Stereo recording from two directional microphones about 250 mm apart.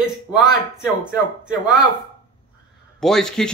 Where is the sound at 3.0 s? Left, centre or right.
Centre.